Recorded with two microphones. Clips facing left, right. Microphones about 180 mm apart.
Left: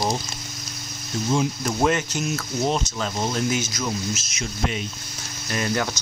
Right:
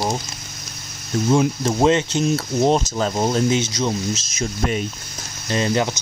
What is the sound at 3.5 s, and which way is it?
Speech, 30° right (ahead or behind).